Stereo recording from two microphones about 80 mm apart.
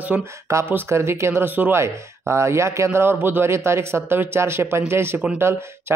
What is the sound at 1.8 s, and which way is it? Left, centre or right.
Speech, right.